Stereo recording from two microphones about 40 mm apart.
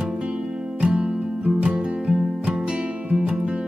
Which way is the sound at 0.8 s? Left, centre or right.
Right.